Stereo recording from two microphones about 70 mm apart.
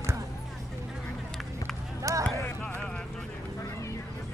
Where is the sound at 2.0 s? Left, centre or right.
Right.